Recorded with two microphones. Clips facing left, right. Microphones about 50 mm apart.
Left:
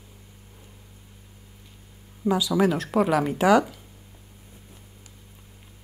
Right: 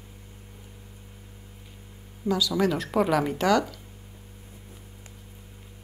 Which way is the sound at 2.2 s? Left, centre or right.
Left.